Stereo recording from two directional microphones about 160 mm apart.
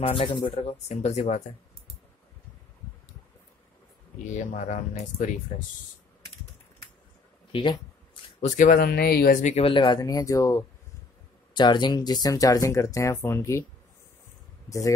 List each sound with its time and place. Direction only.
0.0 s speech: 35° left (ahead or behind)
4.3 s speech: 50° left (ahead or behind)
8.4 s speech: 50° left (ahead or behind); by 13.7 s 20° left (ahead or behind)
14.7 s speech: 20° left (ahead or behind)